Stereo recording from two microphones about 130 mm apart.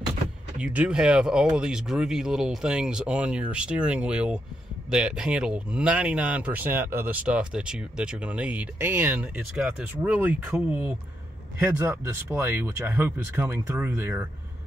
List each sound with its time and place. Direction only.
0.6 s speech: 10° right (ahead or behind)